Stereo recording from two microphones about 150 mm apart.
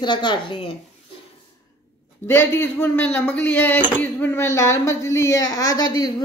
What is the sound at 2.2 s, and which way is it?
Speech, 15° left (ahead or behind).